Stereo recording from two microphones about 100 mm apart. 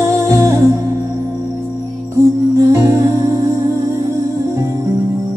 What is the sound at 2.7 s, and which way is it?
Music, 30° right (ahead or behind).